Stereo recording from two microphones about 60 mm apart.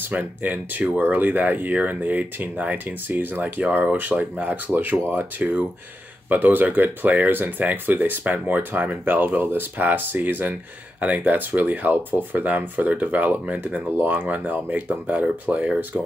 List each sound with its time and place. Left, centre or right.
0.1 s speech: right